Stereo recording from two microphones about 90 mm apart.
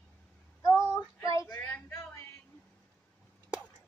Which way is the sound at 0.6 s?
35° left (ahead or behind).